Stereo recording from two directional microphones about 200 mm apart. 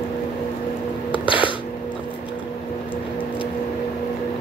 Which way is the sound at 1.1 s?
25° left (ahead or behind).